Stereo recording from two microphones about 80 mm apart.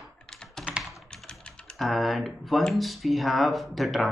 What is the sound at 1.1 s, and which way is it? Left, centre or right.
Typing, centre.